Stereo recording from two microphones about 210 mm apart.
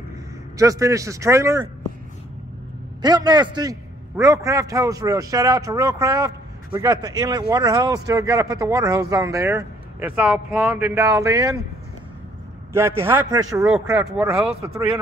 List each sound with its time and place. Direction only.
0.6 s speech: 15° right (ahead or behind)
3.0 s a man's voice: 20° right (ahead or behind)
12.7 s speech: 10° right (ahead or behind)